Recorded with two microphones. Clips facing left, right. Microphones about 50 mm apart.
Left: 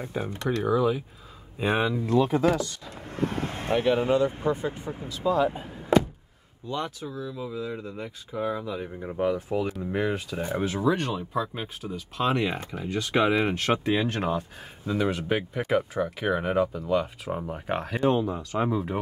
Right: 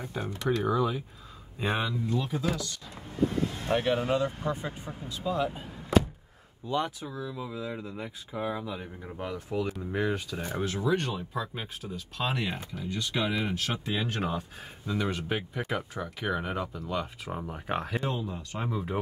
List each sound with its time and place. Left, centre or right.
0.0 s speech: centre
0.6 s speech: centre
2.2 s speech: left
3.1 s vehicle: left
4.4 s speech: centre
5.2 s speech: centre
6.7 s speech: centre
9.0 s speech: centre
12.8 s speech: left
13.7 s speech: left
14.0 s speech: centre
18.2 s speech: left
18.7 s speech: centre